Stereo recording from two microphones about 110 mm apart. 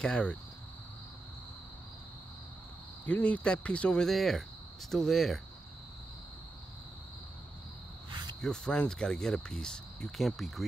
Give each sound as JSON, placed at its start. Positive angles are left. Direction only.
{"t": 0.0, "sound": "speech", "side_deg": 5}
{"t": 3.1, "sound": "speech", "side_deg": 15}
{"t": 8.1, "sound": "cricket", "side_deg": -40}
{"t": 8.4, "sound": "speech", "side_deg": 5}